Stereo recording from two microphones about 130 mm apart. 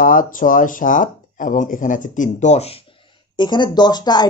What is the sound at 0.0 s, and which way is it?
Speech, 90° left.